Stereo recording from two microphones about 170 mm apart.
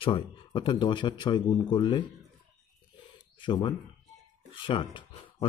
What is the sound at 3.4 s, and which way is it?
Speech, 30° left (ahead or behind).